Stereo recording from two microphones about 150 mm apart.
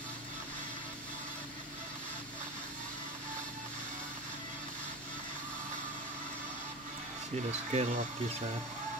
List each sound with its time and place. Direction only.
7.7 s speech: 50° right (ahead or behind)